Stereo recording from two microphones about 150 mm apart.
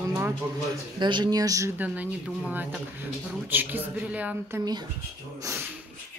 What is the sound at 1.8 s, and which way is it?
Speech, 10° right (ahead or behind).